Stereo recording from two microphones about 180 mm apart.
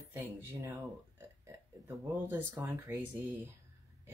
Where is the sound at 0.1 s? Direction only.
15° right (ahead or behind).